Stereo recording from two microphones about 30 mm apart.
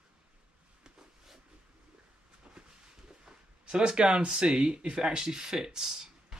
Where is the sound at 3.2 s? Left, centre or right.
Right.